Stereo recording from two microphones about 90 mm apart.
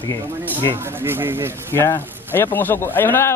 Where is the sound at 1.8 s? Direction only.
20° left (ahead or behind).